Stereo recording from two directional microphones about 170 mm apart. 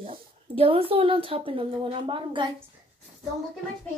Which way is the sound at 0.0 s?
35° right (ahead or behind).